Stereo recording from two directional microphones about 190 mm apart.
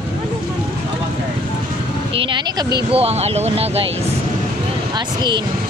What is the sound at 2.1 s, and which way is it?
Vehicle, 30° right (ahead or behind).